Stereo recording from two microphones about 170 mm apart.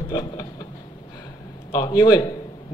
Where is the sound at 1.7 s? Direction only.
25° left (ahead or behind).